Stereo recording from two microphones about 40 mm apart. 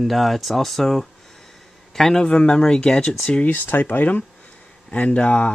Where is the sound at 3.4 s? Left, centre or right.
Left.